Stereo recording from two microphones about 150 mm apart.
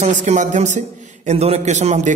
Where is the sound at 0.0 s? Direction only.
55° right (ahead or behind).